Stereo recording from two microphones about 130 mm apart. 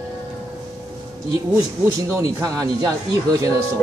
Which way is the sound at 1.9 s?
25° right (ahead or behind).